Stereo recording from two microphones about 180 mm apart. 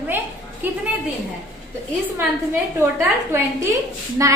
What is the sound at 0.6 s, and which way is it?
Speech, 10° right (ahead or behind).